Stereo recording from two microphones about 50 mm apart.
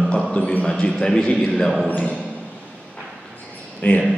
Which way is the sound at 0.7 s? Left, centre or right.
Centre.